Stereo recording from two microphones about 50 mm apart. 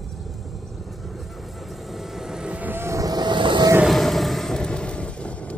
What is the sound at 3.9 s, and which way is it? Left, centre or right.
Vehicle, centre.